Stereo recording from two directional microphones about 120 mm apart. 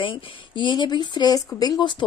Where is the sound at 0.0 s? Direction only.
45° left (ahead or behind).